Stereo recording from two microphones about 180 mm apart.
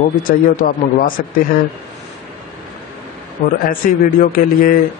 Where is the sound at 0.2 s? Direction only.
50° left (ahead or behind).